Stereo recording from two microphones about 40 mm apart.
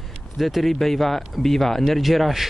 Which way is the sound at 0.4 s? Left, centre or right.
Centre.